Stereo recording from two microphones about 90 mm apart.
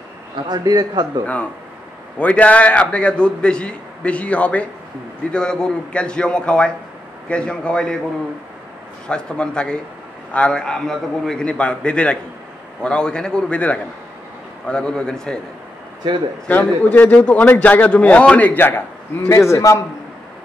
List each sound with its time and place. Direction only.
0.5 s a man's voice: 50° right (ahead or behind)
1.2 s a man's voice: 15° left (ahead or behind)
9.0 s a man's voice: 10° left (ahead or behind)
16.4 s a man's voice: 15° left (ahead or behind)
19.2 s a man's voice: 30° left (ahead or behind)